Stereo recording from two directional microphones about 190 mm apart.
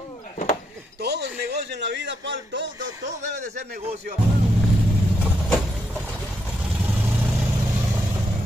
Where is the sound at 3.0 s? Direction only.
40° right (ahead or behind).